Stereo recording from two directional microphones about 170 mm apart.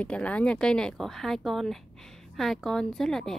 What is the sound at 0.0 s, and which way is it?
A woman's voice, 10° left (ahead or behind).